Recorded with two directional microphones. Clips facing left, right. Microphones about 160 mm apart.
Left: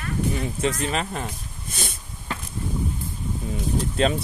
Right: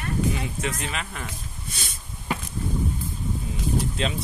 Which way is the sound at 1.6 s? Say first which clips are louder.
Left 7 dB; 50° left (ahead or behind).